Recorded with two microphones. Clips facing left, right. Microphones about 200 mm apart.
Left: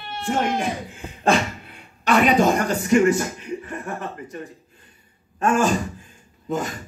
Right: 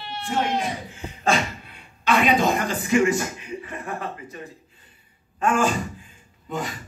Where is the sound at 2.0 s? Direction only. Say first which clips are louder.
Left 3 dB; 45° left (ahead or behind).